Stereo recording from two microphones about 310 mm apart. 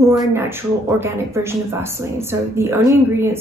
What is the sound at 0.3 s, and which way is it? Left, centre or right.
A woman's voice, centre.